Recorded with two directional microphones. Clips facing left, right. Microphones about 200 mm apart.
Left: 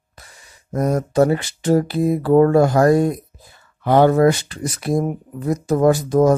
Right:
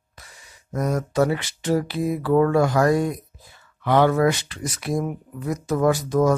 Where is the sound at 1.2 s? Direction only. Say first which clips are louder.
Left 5 dB; 45° left (ahead or behind).